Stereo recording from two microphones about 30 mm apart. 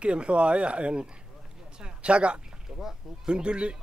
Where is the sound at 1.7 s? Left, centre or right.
Right.